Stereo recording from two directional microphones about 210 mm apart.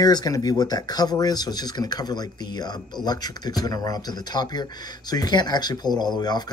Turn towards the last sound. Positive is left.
turn(degrees=20)  # may be behind; listen again after turning